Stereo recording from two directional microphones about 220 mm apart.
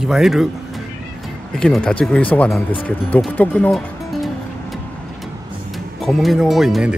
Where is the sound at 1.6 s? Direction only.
5° left (ahead or behind).